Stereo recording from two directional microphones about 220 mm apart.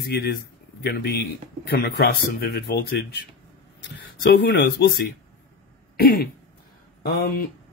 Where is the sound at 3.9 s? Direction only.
50° left (ahead or behind).